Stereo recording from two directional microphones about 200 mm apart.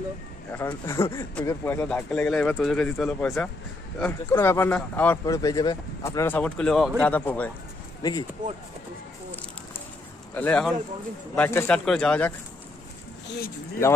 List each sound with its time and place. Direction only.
0.5 s speech: 15° left (ahead or behind)
8.0 s speech: 20° left (ahead or behind)
10.3 s speech: 5° left (ahead or behind)